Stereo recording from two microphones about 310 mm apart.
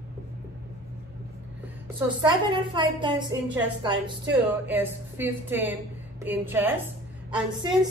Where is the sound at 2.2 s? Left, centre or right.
Centre.